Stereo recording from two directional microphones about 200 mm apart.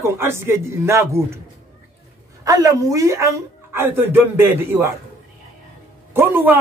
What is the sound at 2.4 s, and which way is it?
A woman's voice, 15° right (ahead or behind).